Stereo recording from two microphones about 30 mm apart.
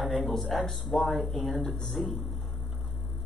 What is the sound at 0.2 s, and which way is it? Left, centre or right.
Speech, centre.